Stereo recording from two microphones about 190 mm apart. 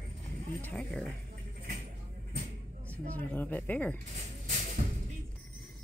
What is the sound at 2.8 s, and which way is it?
Speech, 10° left (ahead or behind).